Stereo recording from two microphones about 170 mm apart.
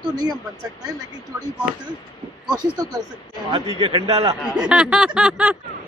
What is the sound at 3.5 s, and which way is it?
Speech, 35° right (ahead or behind).